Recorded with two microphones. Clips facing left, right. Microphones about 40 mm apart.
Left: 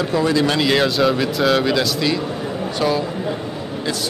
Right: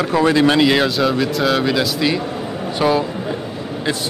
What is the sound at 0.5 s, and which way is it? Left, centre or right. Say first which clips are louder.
Speech: right 2 dB; centre.